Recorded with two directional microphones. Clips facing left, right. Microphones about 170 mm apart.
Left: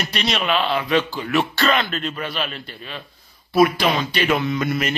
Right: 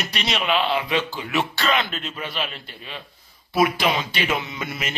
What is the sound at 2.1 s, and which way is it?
Speech, 15° right (ahead or behind).